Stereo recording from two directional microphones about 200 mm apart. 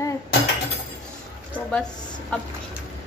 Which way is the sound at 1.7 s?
5° left (ahead or behind).